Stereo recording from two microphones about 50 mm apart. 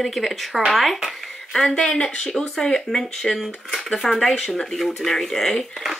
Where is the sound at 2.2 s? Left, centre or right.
Centre.